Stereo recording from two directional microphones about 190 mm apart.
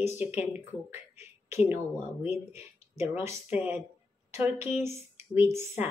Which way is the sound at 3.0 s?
35° left (ahead or behind).